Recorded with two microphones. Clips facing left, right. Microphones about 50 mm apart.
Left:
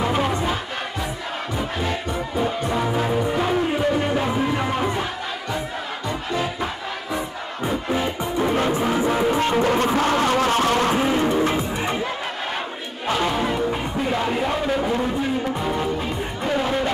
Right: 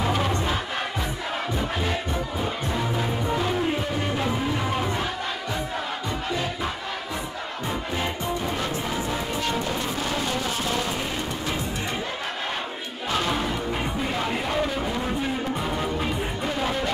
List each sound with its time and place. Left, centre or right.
0.1 s music: centre
2.7 s music: left
9.6 s music: left
11.1 s music: left
13.2 s music: left
16.4 s music: centre